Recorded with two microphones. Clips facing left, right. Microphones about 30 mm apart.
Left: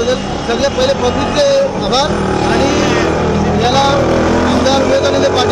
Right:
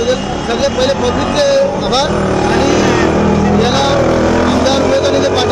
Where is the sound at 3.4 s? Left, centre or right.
Centre.